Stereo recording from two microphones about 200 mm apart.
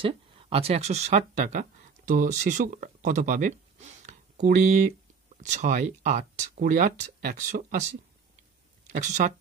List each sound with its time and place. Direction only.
0.0 s speech: 30° right (ahead or behind)
8.9 s speech: 35° right (ahead or behind)